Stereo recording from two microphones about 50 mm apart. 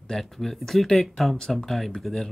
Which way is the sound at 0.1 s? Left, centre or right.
Centre.